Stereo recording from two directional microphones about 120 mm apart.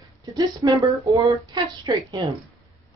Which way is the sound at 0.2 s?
35° right (ahead or behind).